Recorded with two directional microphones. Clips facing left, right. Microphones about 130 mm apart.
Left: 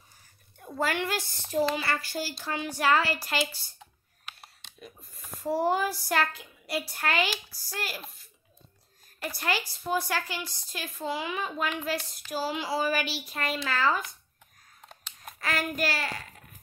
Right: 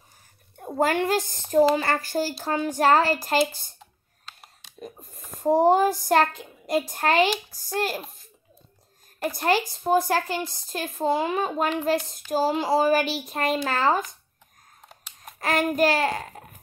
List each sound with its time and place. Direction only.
0.6 s a woman's voice: 45° right (ahead or behind)
4.7 s a woman's voice: 40° right (ahead or behind)
15.3 s a child's voice: 45° right (ahead or behind)